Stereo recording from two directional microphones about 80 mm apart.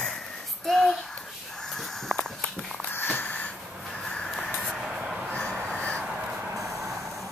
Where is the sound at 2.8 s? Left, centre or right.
Left; by 5.3 s centre.